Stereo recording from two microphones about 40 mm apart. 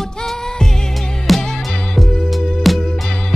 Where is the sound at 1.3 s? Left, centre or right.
Centre.